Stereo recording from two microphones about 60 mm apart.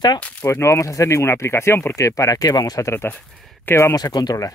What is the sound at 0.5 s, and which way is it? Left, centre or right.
Speech, left.